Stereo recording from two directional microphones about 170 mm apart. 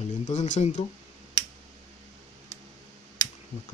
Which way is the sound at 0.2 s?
45° left (ahead or behind).